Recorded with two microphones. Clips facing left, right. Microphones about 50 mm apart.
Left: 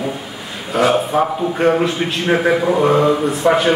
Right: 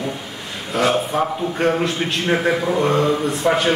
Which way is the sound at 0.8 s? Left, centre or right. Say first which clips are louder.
Left 4 dB; centre.